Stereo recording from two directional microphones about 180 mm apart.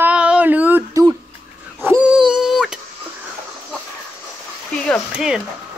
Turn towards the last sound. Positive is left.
turn(degrees=-5)  # may be behind; listen again after turning